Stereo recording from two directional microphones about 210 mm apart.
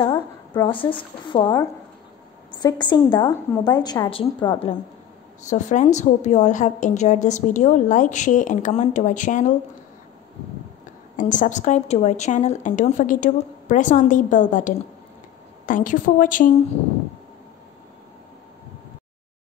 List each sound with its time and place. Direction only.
0.0 s a woman's voice: 20° left (ahead or behind)
5.5 s a woman's voice: 35° left (ahead or behind)
11.1 s a woman's voice: 35° left (ahead or behind)